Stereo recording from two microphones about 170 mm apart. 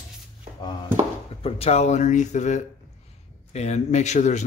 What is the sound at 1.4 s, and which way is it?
Speech, 35° left (ahead or behind).